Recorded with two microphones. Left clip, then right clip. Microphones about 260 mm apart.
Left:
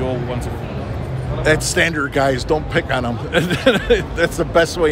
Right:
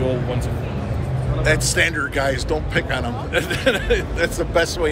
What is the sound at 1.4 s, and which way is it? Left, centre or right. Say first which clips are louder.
A man's voice: left 3 dB; left.